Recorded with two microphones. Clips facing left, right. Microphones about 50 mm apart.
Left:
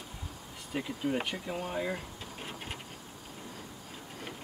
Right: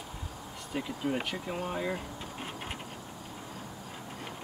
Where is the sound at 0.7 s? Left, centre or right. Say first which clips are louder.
Even; centre.